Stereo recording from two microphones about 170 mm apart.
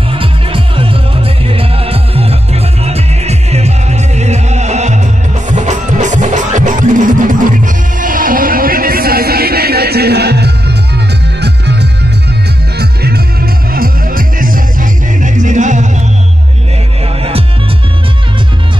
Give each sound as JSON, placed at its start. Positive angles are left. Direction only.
{"t": 0.1, "sound": "music", "side_deg": -30}
{"t": 12.7, "sound": "music", "side_deg": -70}